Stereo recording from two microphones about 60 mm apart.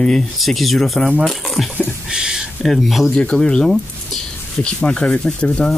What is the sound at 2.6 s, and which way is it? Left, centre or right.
Speech, centre.